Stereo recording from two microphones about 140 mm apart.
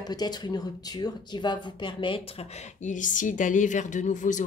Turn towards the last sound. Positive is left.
turn(degrees=65)  # may be behind; listen again after turning